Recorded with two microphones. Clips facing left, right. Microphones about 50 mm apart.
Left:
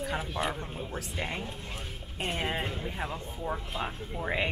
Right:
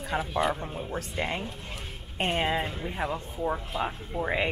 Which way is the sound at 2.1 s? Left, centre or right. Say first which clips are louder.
Right 5 dB; right.